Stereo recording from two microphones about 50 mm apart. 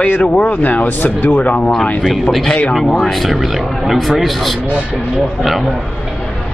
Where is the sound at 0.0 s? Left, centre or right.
Left.